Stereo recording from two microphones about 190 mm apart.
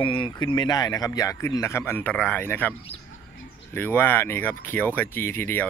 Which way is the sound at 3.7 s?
10° left (ahead or behind).